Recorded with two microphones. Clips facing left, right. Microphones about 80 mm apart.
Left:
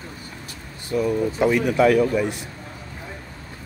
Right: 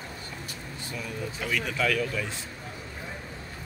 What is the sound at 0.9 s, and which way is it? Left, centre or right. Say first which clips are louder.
Speech: left 15 dB; left.